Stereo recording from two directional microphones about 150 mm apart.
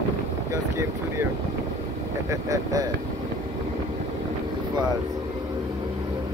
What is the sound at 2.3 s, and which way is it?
Speech, 25° right (ahead or behind).